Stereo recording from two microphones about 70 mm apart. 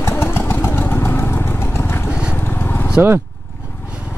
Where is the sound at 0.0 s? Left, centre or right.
Left.